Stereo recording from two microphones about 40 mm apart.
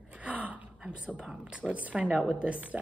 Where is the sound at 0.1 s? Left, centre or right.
Right.